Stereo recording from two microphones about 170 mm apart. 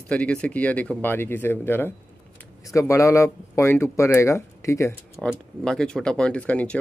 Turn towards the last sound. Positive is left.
turn(degrees=10)  # may be behind; listen again after turning